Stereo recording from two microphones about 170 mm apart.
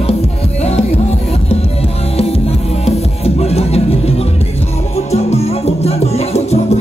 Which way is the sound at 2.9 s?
35° left (ahead or behind).